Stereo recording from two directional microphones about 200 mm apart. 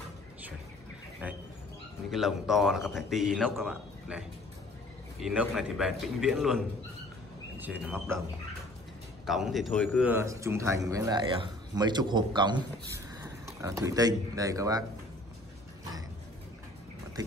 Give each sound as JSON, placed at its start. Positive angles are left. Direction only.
{"t": 2.0, "sound": "a man's voice", "side_deg": 0}
{"t": 5.2, "sound": "a man's voice", "side_deg": -5}
{"t": 9.2, "sound": "a man's voice", "side_deg": 0}
{"t": 10.1, "sound": "a man's voice", "side_deg": -15}